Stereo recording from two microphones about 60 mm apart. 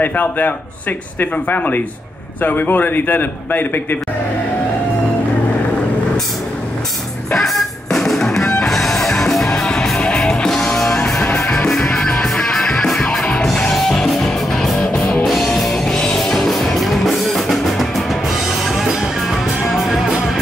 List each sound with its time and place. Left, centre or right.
0.0 s a man's voice: left
7.2 s music: centre